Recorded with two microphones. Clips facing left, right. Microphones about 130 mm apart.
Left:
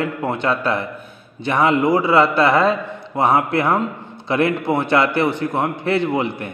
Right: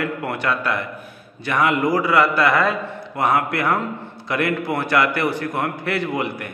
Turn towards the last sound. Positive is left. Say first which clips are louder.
# left 4 dB
turn(degrees=25)  # may be behind; listen again after turning